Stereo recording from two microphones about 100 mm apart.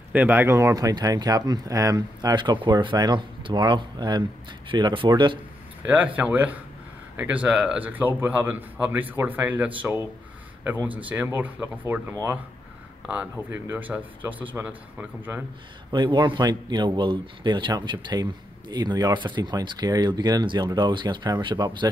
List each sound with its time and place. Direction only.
0.1 s a man's voice: 20° right (ahead or behind); by 5.4 s 55° right (ahead or behind)
5.9 s a man's voice: 15° right (ahead or behind)
15.9 s a man's voice: 50° right (ahead or behind)